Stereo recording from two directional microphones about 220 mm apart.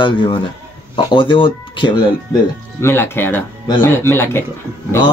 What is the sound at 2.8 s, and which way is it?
Speech, 10° left (ahead or behind).